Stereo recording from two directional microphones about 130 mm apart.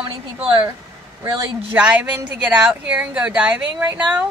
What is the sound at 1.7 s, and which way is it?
A woman's voice, 10° right (ahead or behind).